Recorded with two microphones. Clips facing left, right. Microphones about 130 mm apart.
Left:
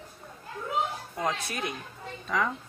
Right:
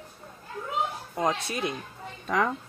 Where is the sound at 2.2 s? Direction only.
55° right (ahead or behind).